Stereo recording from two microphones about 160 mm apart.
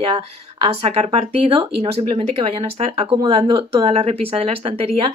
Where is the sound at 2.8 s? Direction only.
35° right (ahead or behind).